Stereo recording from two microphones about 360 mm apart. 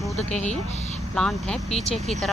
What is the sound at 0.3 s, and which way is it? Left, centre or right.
Speech, centre.